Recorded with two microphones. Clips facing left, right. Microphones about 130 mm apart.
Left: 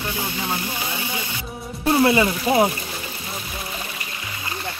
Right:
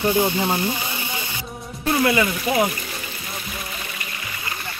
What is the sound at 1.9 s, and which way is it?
Speech, 30° left (ahead or behind).